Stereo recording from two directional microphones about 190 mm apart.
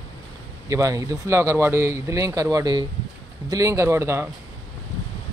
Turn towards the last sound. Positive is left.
turn(degrees=-15)  # may be behind; listen again after turning